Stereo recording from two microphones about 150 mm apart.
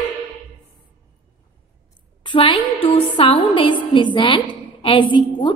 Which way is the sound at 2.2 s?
35° left (ahead or behind).